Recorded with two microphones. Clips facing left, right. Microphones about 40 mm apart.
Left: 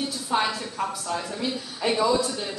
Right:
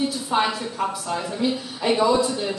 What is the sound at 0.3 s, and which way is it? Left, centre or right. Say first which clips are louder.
A woman's voice: right 1 dB; right.